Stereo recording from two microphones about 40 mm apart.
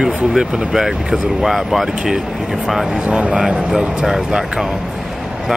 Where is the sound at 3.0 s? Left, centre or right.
Right.